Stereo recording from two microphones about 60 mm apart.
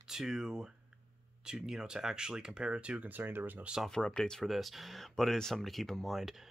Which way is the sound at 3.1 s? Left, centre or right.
Right.